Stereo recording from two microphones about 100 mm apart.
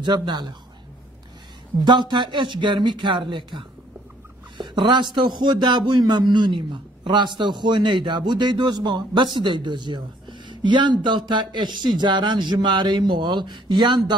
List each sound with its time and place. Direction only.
0.0 s a man's voice: 45° right (ahead or behind)
1.9 s a man's voice: 50° right (ahead or behind)